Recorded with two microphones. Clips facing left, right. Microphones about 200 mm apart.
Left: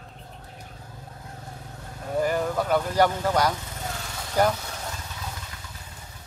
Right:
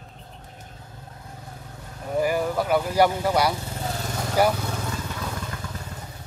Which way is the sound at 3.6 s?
35° right (ahead or behind).